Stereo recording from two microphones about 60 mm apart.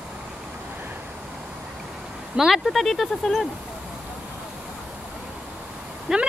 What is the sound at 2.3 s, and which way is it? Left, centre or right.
Speech, centre.